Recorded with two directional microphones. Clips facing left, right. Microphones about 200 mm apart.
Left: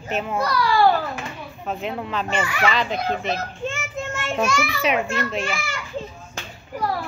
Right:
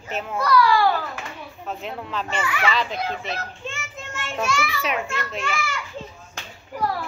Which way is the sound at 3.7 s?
45° left (ahead or behind).